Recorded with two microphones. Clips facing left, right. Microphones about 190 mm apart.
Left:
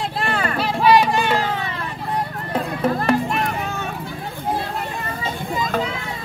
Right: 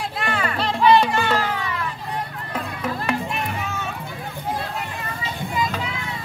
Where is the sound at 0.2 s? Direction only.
40° left (ahead or behind).